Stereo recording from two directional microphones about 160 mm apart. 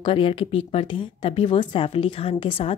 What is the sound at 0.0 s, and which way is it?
Speech, 35° left (ahead or behind).